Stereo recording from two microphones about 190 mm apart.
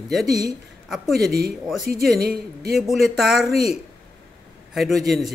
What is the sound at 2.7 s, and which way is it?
Speech, centre (ahead or behind).